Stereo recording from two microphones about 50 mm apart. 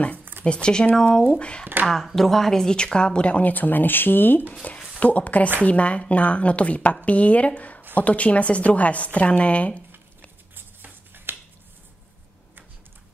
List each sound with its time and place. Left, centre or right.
0.2 s a sound: right
0.5 s speech: centre
1.4 s speech: left
1.9 s speech: centre; by 4.6 s left
5.0 s speech: left
10.5 s scissors: right